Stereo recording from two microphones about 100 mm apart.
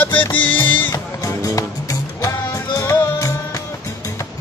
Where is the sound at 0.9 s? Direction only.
35° left (ahead or behind).